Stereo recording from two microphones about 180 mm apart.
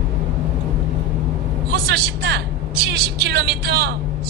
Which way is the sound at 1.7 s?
65° right (ahead or behind).